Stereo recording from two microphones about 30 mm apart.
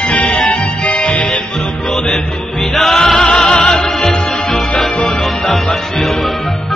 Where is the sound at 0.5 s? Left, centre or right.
Left.